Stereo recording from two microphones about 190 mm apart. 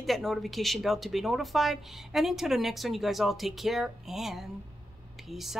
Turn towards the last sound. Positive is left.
turn(degrees=0)  # may be behind; listen again after turning